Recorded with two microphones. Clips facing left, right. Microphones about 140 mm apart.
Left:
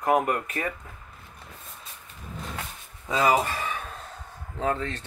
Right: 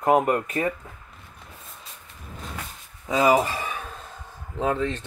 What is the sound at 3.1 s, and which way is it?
Speech, 15° right (ahead or behind).